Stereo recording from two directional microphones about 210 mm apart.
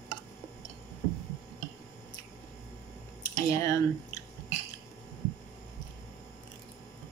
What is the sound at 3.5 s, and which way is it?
Speech, 15° left (ahead or behind).